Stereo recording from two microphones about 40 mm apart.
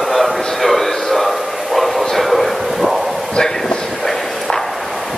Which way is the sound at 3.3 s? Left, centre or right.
Left.